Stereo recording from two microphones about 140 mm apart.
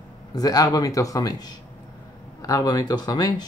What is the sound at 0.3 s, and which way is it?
Speech, 25° left (ahead or behind).